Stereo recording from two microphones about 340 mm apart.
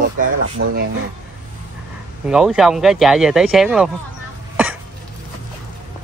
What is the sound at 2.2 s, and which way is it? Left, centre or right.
Speech, centre.